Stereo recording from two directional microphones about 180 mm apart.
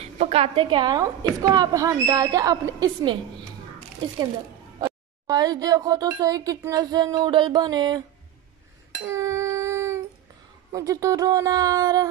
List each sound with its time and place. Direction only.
0.0 s a woman's voice: 35° right (ahead or behind)
4.7 s speech: 20° right (ahead or behind)
9.0 s a sound: 15° right (ahead or behind)
10.7 s speech: 20° right (ahead or behind)